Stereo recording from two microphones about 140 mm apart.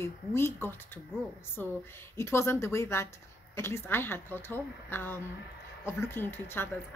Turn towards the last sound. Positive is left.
turn(degrees=15)  # may be behind; listen again after turning